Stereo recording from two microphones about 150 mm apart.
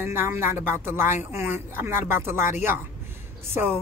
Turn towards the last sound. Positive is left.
turn(degrees=-10)  # may be behind; listen again after turning